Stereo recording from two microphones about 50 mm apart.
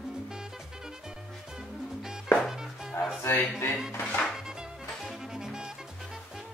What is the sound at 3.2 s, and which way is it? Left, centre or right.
Speech, left.